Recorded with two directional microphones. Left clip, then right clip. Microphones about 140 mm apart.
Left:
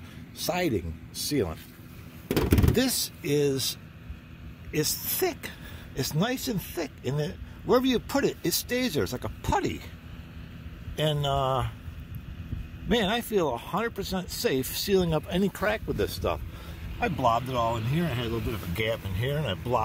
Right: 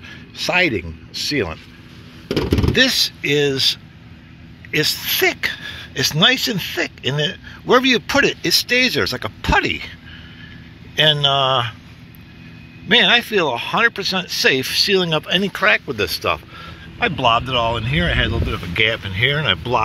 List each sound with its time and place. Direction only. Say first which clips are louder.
0.4 s speech: right 11 dB; 20° left (ahead or behind)
2.3 s speech: right 6 dB; 5° right (ahead or behind)
2.7 s a woman's voice: right 12 dB; 20° left (ahead or behind)
11.0 s speech: right 13 dB; 20° left (ahead or behind)
12.8 s speech: right 14 dB; 20° left (ahead or behind); by 18.6 s centre (ahead or behind)
18.8 s speech: right 14 dB; 10° left (ahead or behind)